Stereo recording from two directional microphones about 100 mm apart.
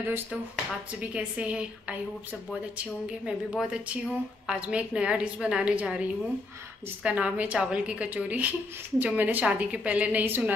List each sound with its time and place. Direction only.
0.0 s a woman's voice: 20° right (ahead or behind)
3.1 s a woman's voice: 10° right (ahead or behind)